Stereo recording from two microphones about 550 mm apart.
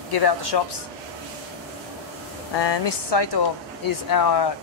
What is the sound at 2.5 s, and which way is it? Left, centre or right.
Speech, left.